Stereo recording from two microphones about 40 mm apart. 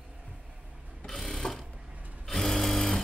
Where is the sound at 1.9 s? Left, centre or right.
Right.